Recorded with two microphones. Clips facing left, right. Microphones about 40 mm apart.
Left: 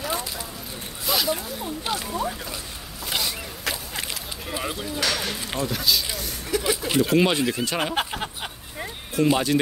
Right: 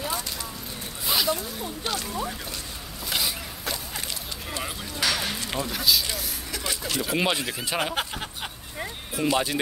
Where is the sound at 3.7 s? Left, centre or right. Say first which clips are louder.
Left 3 dB; left.